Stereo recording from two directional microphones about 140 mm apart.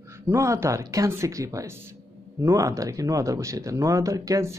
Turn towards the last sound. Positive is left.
turn(degrees=-20)  # may be behind; listen again after turning